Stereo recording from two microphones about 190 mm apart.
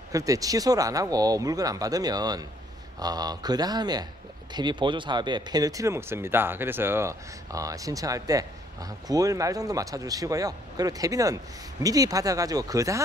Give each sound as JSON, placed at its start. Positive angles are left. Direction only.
{"t": 0.1, "sound": "speech", "side_deg": -20}